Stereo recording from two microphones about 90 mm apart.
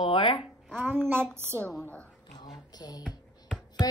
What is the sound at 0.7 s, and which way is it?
Speech, 20° right (ahead or behind).